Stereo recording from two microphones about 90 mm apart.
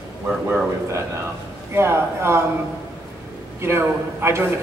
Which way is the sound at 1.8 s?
30° right (ahead or behind).